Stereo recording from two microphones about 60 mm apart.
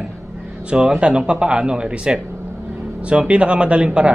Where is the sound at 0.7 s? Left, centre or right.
Centre.